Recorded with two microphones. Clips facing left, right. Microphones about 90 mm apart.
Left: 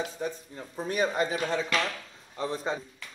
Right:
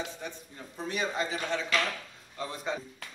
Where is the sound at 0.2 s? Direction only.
20° left (ahead or behind).